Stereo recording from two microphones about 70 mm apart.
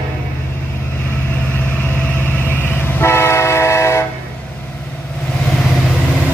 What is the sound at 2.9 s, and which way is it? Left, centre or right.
Train, left.